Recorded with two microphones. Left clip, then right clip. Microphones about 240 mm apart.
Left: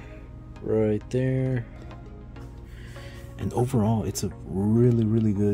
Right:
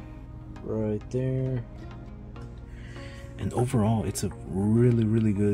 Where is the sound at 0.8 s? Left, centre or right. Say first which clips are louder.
Left 5 dB; left.